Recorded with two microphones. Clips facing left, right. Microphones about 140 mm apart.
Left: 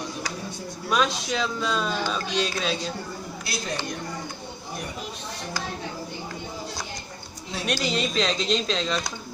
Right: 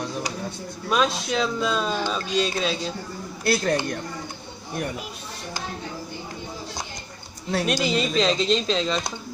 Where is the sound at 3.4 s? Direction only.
55° right (ahead or behind).